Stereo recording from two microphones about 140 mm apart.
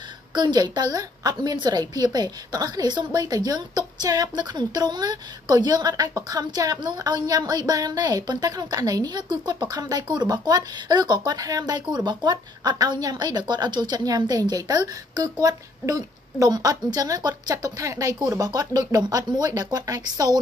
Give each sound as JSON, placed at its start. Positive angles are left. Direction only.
{"t": 0.3, "sound": "a woman's voice", "side_deg": -30}